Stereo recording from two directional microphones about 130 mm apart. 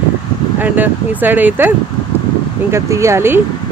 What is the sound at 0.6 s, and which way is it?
Speech, 15° right (ahead or behind).